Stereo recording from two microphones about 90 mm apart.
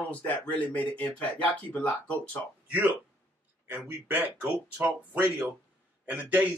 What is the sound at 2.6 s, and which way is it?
Speech, 20° right (ahead or behind).